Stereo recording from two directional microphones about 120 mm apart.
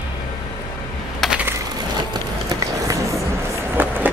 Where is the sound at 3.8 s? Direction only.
15° right (ahead or behind).